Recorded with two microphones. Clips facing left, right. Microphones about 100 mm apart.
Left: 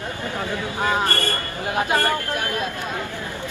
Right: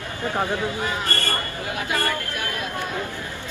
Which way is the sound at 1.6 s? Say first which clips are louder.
Left 7 dB; 25° left (ahead or behind).